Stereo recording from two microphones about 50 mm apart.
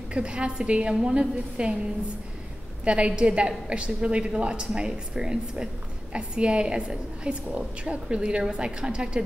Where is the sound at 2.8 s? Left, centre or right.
Right.